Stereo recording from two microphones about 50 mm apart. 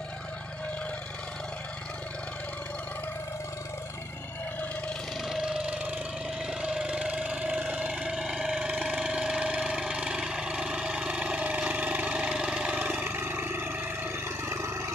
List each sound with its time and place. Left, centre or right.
5.3 s engine: centre
12.6 s vehicle: right
13.0 s vehicle: right
14.5 s vehicle: right